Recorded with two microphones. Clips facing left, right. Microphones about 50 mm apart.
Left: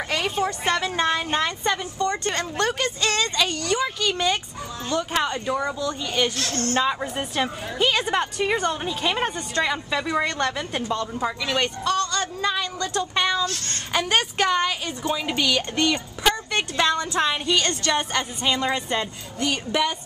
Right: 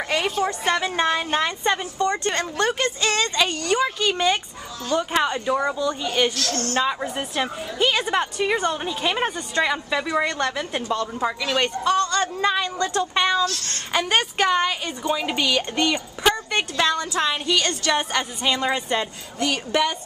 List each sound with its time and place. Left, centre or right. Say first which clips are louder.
0.5 s speech: right 1 dB; centre
6.3 s speech: right 1 dB; left
6.8 s a woman's voice: right 1 dB; centre
16.9 s music: even; centre
17.6 s speech: right 1 dB; centre